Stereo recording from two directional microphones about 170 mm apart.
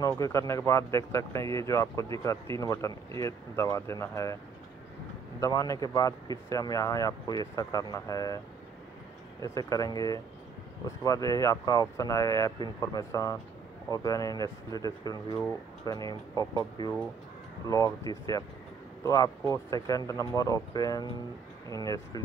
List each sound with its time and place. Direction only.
0.1 s speech: 20° left (ahead or behind)
5.4 s speech: 20° left (ahead or behind)
9.4 s speech: 20° left (ahead or behind)